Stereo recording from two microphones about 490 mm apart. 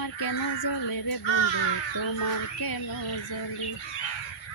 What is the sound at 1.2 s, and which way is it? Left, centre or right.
Speech, left.